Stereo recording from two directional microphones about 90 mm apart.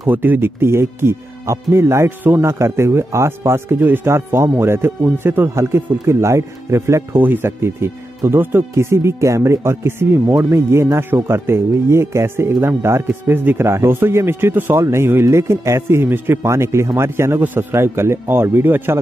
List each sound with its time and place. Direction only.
0.1 s speech: 20° right (ahead or behind)